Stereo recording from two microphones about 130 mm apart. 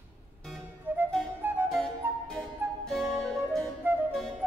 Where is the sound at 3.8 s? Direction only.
15° right (ahead or behind).